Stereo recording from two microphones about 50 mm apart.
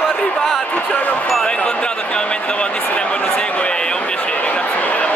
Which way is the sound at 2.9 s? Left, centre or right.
Left.